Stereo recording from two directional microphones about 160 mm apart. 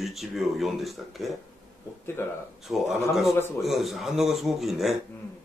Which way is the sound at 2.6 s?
Centre (ahead or behind).